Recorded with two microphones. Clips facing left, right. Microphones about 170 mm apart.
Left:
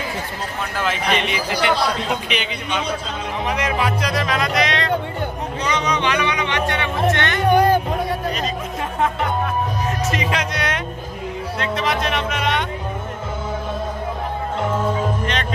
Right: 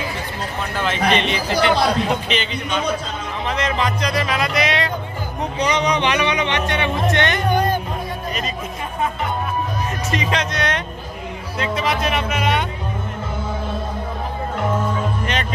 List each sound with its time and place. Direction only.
0.7 s a man's voice: 5° left (ahead or behind)
5.6 s speech: 15° right (ahead or behind)
7.4 s music: 70° left (ahead or behind)
10.0 s speech: 5° left (ahead or behind)
11.5 s speech: 5° right (ahead or behind)